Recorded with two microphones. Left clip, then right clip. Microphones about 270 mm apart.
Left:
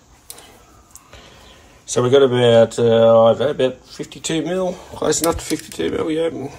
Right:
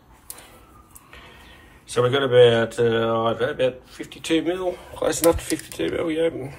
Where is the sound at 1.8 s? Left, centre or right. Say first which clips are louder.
Left 7 dB; centre.